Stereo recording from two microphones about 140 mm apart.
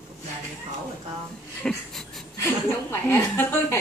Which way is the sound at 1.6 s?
Centre (ahead or behind).